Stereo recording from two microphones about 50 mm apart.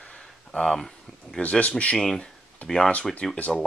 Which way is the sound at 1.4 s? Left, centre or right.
Left.